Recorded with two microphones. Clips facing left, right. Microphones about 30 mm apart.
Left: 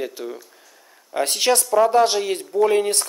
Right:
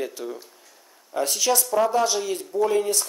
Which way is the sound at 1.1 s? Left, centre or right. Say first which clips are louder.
Left 3 dB; left.